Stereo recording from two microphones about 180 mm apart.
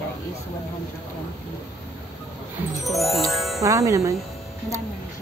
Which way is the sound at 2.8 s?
Centre (ahead or behind).